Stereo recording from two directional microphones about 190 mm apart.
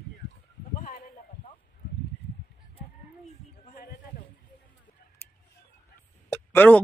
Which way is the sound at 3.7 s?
55° left (ahead or behind).